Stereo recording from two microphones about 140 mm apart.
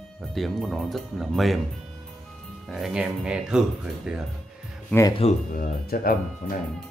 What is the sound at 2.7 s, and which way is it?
Speech, 5° right (ahead or behind).